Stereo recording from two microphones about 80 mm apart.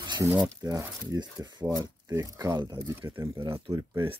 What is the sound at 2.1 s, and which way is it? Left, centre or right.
Speech, right.